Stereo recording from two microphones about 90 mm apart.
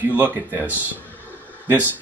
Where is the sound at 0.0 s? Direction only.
20° right (ahead or behind).